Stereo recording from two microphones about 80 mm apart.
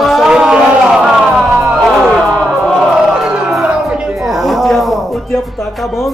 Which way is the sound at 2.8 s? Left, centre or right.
Centre.